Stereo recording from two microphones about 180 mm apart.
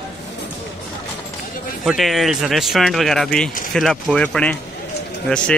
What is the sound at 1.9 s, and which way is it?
Speech, centre (ahead or behind).